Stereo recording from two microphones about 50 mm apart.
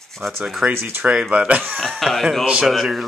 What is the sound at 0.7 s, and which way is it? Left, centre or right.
Speech, right.